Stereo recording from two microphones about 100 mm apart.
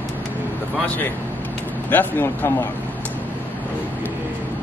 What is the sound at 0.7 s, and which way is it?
Speech, 15° left (ahead or behind).